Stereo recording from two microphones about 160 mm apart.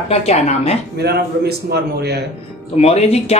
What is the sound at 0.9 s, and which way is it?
A man's voice, 90° right.